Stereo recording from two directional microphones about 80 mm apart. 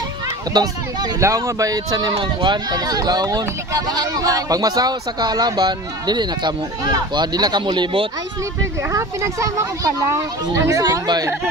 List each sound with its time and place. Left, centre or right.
0.5 s speech: right
1.2 s speech: right
8.9 s speech: right
10.8 s speech: right